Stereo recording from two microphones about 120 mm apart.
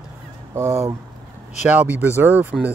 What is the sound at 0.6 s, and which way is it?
Speech, 25° right (ahead or behind).